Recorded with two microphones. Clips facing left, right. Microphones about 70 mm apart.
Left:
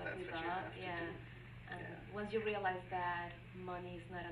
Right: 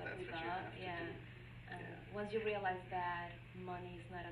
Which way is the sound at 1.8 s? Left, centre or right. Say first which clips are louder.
Left 1 dB; centre.